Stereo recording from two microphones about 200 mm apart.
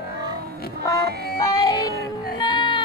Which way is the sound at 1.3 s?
20° left (ahead or behind).